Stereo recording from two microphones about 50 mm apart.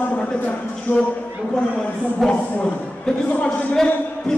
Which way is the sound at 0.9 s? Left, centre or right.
Left.